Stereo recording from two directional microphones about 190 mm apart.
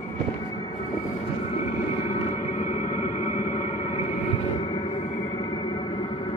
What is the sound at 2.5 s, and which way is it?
Music, 40° left (ahead or behind).